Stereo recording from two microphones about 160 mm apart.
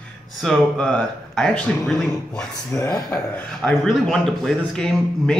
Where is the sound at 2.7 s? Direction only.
20° left (ahead or behind).